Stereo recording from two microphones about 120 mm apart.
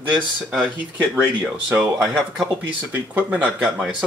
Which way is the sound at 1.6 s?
5° right (ahead or behind).